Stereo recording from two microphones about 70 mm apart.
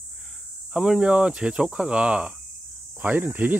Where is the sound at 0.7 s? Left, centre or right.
Centre.